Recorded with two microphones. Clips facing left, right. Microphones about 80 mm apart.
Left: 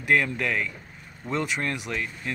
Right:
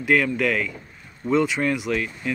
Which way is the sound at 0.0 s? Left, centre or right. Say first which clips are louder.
Right 3 dB; centre.